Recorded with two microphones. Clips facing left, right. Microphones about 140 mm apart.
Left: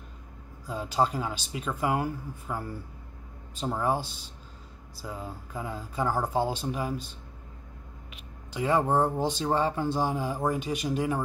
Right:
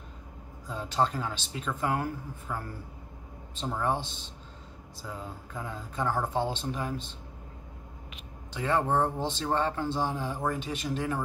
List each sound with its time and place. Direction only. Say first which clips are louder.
0.7 s speech: left 2 dB; 10° left (ahead or behind)
8.5 s speech: left 2 dB; 10° left (ahead or behind)